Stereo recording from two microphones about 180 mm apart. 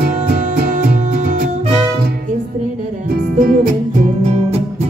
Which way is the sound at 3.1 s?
50° right (ahead or behind).